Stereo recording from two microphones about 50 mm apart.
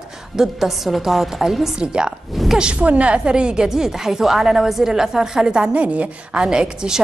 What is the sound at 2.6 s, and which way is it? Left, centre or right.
A woman's voice, right.